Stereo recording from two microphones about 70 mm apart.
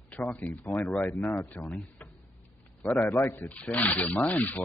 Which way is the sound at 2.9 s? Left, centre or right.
Left.